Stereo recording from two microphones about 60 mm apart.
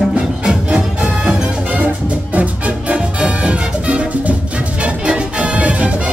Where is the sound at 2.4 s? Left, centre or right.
Right.